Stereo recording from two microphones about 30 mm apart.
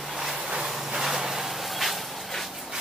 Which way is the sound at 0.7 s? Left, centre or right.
Centre.